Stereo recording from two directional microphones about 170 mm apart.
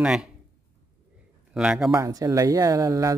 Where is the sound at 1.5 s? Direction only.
5° right (ahead or behind).